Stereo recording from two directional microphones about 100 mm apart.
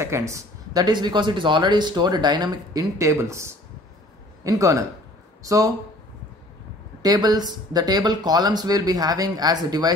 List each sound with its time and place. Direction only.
0.0 s speech: 30° right (ahead or behind)
0.8 s a man's voice: 45° right (ahead or behind)
7.0 s speech: 40° right (ahead or behind)